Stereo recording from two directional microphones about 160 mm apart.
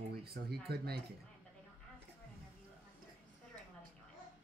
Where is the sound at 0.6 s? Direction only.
80° right.